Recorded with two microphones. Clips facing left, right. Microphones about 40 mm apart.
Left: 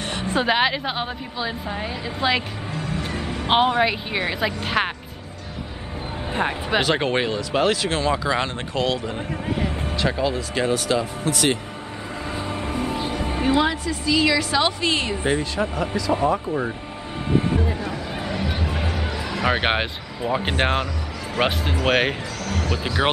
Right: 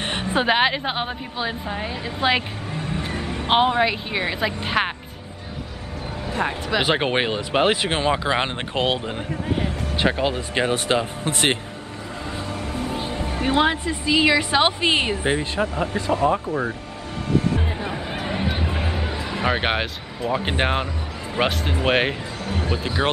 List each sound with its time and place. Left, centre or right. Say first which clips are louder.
0.0 s music: right 1 dB; right
0.3 s a woman's voice: right 1 dB; centre
1.7 s speech: even; centre
2.2 s speech: right 1 dB; centre
3.0 s music: even; centre
3.4 s speech: even; centre
6.8 s speech: right 1 dB; right
12.4 s music: left 3 dB; left
13.5 s speech: right 1 dB; right
15.9 s speech: even; left
17.6 s music: left 1 dB; right
18.9 s a sound: even; centre
19.5 s speech: left 1 dB; centre
22.4 s speech: right 1 dB; right